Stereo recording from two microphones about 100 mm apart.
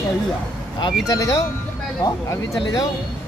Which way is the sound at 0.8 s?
50° left (ahead or behind).